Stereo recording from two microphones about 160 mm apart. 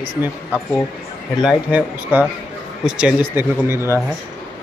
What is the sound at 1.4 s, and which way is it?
Speech, 5° right (ahead or behind).